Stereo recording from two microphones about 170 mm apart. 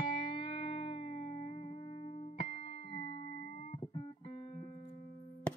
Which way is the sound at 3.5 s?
50° left (ahead or behind).